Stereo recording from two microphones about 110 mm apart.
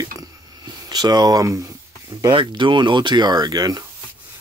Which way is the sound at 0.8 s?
40° right (ahead or behind).